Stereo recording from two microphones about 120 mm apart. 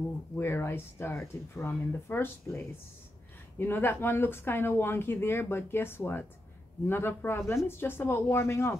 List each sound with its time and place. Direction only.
0.4 s speech: 20° left (ahead or behind)